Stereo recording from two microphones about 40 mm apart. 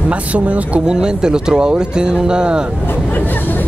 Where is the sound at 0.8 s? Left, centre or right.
Centre.